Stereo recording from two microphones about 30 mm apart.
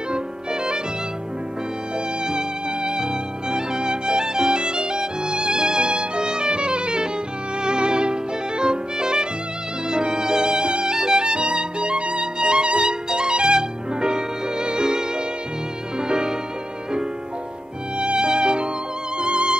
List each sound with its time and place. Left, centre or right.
0.1 s music: right
2.2 s music: right
7.6 s violin: right
9.8 s music: right
17.9 s music: right